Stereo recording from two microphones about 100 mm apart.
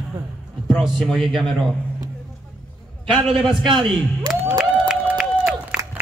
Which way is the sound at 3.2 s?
5° right (ahead or behind).